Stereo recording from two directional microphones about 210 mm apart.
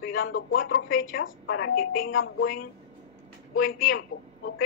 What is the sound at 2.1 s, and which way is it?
Speech, 70° left (ahead or behind).